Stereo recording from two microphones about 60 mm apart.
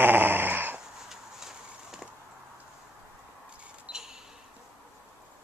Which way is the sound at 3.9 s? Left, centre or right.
Centre.